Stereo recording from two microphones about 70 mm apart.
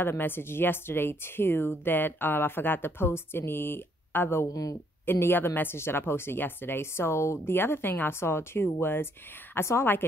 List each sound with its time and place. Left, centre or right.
0.0 s a woman's voice: left